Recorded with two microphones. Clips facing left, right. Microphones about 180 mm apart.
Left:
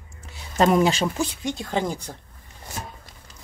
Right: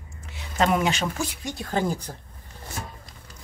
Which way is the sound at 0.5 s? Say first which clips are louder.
Left 4 dB; 35° left (ahead or behind).